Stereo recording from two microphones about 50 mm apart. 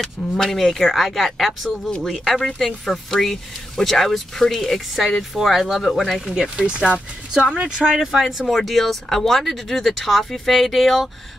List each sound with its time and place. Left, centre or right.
0.0 s speech: centre
6.5 s speech: centre
8.2 s speech: centre